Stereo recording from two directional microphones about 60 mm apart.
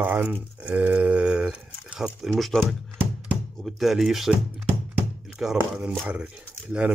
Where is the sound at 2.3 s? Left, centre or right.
Centre.